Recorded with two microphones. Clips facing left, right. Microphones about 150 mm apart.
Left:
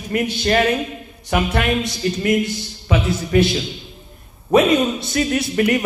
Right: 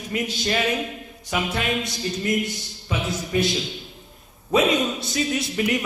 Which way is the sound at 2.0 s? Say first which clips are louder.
Left 8 dB; 75° left (ahead or behind).